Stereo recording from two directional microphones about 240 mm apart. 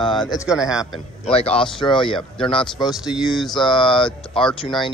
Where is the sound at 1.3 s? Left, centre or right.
Left.